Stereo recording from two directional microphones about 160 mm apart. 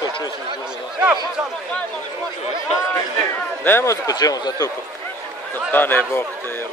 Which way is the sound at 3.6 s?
15° left (ahead or behind).